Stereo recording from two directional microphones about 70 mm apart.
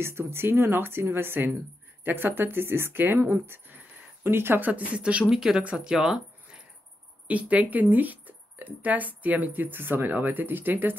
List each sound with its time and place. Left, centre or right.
0.0 s speech: right; by 5.2 s centre
5.3 s speech: centre
7.2 s speech: right